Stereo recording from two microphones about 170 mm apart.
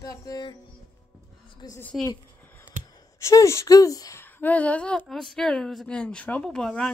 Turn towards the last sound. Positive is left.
turn(degrees=5)  # may be behind; listen again after turning